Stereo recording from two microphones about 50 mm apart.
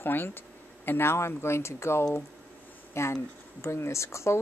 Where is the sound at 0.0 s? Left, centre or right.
Left.